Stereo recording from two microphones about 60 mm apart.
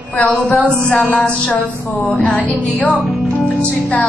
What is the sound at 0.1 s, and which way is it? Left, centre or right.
Speech, left.